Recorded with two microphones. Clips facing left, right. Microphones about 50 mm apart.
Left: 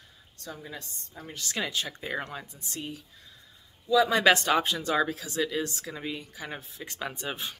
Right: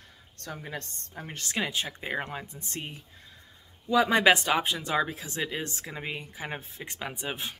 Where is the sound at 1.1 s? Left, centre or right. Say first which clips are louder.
Right 1 dB; right.